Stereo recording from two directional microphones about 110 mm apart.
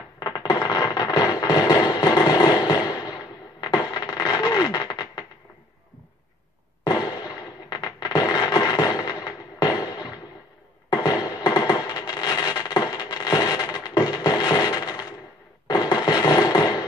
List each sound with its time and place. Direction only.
0.2 s music: 40° left (ahead or behind)
3.6 s a sound: 40° left (ahead or behind)
6.9 s fireworks: 40° left (ahead or behind)
15.6 s music: 40° left (ahead or behind)